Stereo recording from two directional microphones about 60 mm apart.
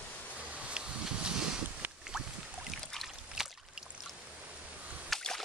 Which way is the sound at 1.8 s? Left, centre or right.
Right.